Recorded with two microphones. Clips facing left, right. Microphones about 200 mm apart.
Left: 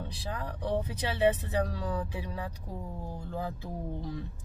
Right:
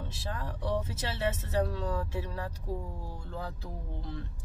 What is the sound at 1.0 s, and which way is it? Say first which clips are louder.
Speech: left 6 dB; 15° left (ahead or behind).